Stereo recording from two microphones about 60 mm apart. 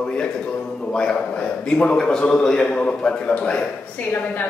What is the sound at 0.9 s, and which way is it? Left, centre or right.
A man's voice, centre.